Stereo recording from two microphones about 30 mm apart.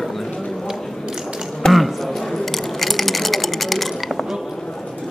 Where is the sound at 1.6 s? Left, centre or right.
Left.